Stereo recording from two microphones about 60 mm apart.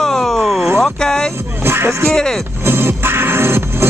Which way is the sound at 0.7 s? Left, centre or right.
Centre.